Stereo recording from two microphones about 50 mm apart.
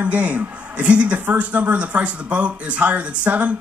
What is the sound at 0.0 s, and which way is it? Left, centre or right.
A man's voice, right.